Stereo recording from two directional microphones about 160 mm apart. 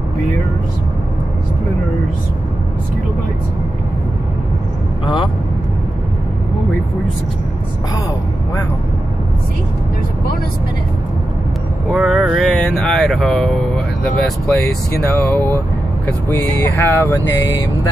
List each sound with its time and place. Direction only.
5.0 s vehicle: 30° left (ahead or behind)
11.9 s a sound: centre (ahead or behind); by 15.6 s 15° left (ahead or behind)
16.3 s vehicle: 15° left (ahead or behind)